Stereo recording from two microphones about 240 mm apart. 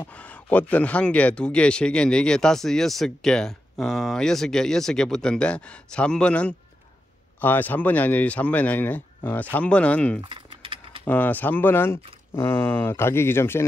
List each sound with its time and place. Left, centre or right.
0.0 s speech: centre
10.2 s typing: right
11.1 s speech: centre